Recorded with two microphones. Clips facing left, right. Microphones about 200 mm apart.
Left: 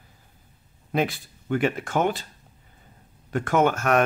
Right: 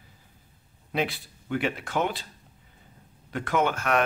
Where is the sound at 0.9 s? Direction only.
45° left (ahead or behind).